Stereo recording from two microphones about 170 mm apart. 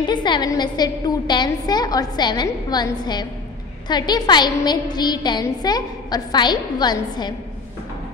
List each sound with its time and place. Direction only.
0.1 s a woman's voice: 25° left (ahead or behind)